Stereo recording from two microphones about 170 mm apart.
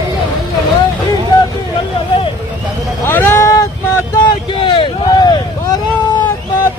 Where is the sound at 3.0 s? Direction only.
15° left (ahead or behind).